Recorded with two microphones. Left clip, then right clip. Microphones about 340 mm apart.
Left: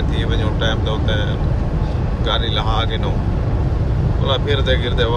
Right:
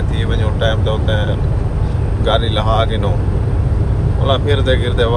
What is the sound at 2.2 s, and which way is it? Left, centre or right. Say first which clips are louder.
Speech: right 5 dB; centre.